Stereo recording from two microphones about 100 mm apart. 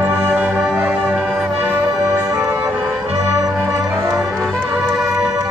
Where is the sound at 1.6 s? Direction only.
20° right (ahead or behind).